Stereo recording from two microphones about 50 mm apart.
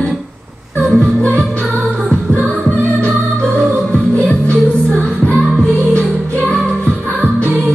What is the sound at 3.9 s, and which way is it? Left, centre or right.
Music, left.